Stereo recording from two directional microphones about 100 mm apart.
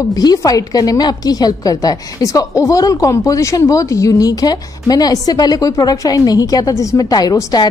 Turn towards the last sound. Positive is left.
turn(degrees=35)  # may be behind; listen again after turning